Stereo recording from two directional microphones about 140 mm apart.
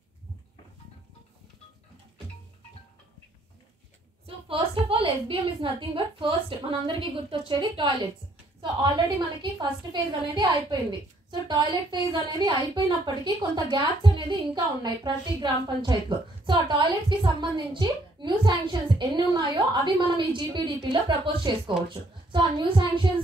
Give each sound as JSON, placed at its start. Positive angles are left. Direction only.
{"t": 4.5, "sound": "a woman's voice", "side_deg": -40}